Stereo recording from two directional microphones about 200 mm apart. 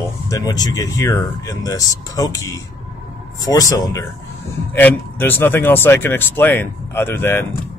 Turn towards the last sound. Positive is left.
turn(degrees=10)  # may be behind; listen again after turning